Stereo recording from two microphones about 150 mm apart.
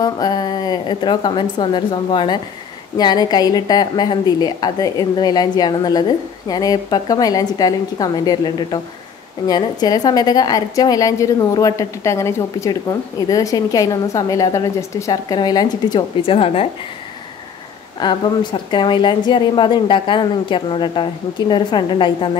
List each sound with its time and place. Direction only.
0.0 s a woman's voice: 25° left (ahead or behind)
18.0 s a woman's voice: 30° left (ahead or behind)